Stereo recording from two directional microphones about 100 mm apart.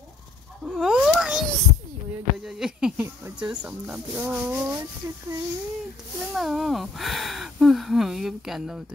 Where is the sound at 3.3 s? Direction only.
10° right (ahead or behind).